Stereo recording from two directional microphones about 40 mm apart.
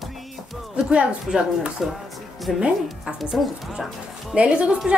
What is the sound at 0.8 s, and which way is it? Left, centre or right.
Speech, right.